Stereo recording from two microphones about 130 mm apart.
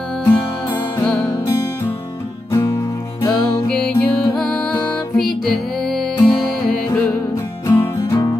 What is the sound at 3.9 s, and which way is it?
Music, 15° left (ahead or behind).